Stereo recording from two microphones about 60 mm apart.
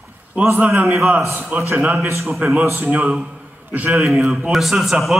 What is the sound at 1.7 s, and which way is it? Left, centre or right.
Speech, right.